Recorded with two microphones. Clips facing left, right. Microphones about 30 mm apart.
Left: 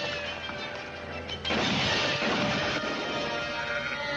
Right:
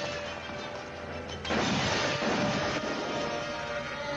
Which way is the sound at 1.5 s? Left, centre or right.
Left.